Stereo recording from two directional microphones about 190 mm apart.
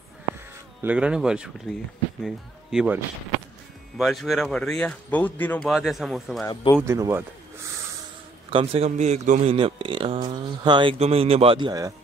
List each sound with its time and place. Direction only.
0.8 s speech: 5° right (ahead or behind)
4.0 s speech: centre (ahead or behind)
6.4 s speech: 25° left (ahead or behind)
6.8 s speech: 15° right (ahead or behind)
8.5 s a man's voice: 30° right (ahead or behind)